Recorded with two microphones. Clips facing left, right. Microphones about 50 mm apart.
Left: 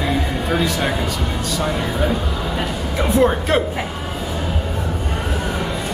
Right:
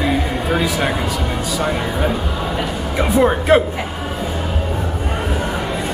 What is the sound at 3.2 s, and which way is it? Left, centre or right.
Speech, centre.